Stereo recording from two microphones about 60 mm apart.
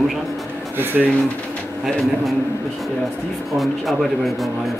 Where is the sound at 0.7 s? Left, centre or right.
Right.